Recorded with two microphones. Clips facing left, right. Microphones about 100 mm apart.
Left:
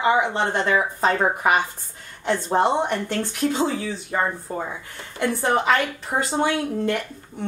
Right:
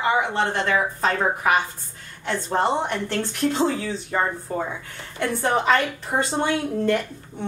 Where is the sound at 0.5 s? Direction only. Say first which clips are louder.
Left 1 dB; 25° left (ahead or behind).